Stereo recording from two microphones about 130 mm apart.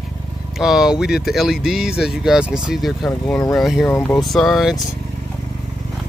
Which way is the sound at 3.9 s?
15° left (ahead or behind).